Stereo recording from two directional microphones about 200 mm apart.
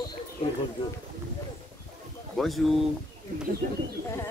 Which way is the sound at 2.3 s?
Centre (ahead or behind).